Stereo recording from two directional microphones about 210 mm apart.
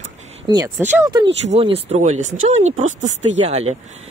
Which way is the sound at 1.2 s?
30° right (ahead or behind).